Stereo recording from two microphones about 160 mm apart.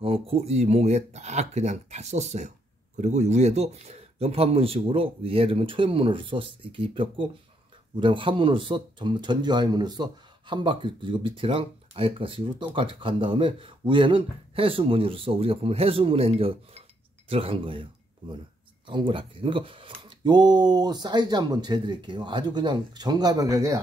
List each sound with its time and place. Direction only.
0.0 s speech: 35° right (ahead or behind)
18.9 s speech: 30° right (ahead or behind)